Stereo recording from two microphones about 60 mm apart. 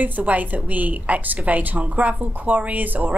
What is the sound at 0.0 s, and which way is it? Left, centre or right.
Speech, right.